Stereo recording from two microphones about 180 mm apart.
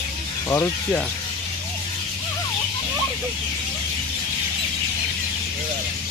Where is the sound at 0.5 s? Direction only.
15° left (ahead or behind).